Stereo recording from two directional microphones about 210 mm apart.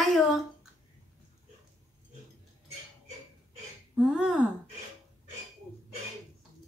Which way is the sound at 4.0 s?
5° right (ahead or behind).